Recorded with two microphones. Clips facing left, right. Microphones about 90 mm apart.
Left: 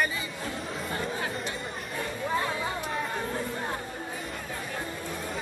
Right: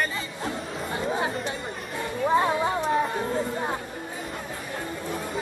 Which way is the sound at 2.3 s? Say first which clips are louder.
Right 9 dB; 30° right (ahead or behind).